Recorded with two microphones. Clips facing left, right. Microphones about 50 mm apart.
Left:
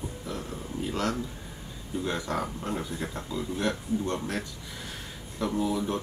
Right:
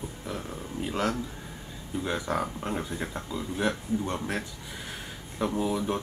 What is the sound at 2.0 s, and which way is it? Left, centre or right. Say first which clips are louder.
Speech: right 2 dB; centre.